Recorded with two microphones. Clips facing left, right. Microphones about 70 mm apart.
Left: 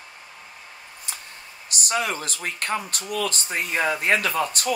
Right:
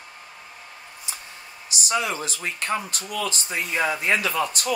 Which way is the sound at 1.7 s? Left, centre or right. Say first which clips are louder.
Even; left.